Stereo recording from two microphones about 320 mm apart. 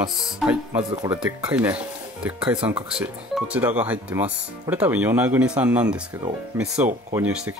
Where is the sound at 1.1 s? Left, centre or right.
Centre.